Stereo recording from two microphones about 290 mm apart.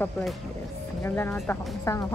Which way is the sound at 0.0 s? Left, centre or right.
Centre.